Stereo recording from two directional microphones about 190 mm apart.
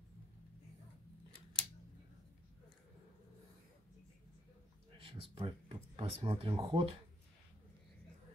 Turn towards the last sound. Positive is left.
turn(degrees=-25)  # may be behind; listen again after turning